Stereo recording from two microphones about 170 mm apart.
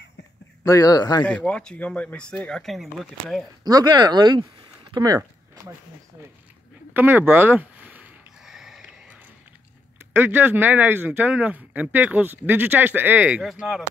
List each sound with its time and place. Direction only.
0.7 s speech: 20° left (ahead or behind)
1.2 s speech: 5° left (ahead or behind)
3.6 s speech: 20° right (ahead or behind)
6.9 s a sound: 10° right (ahead or behind)
10.1 s speech: 10° right (ahead or behind)